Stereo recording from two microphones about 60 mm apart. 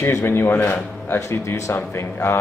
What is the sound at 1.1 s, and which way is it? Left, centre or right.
A man's voice, left.